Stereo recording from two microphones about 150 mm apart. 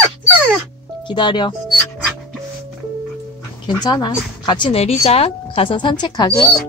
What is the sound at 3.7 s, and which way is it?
Speech, 30° left (ahead or behind).